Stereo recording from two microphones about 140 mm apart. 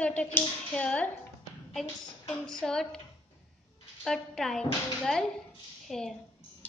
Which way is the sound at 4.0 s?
5° left (ahead or behind).